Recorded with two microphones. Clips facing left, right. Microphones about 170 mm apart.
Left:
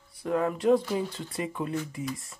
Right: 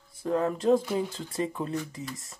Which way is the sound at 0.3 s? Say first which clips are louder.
Even; 30° right (ahead or behind).